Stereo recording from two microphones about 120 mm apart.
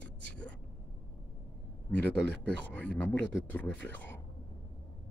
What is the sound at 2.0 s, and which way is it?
Speech, 10° left (ahead or behind).